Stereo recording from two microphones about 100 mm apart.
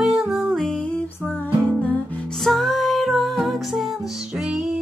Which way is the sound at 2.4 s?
Centre (ahead or behind).